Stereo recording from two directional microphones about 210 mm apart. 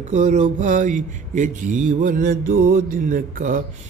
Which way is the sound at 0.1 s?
35° right (ahead or behind).